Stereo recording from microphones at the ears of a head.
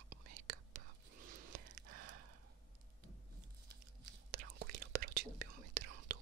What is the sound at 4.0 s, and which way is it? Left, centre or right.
Whispering, right.